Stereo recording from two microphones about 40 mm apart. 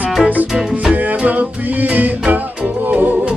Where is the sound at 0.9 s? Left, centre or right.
Right.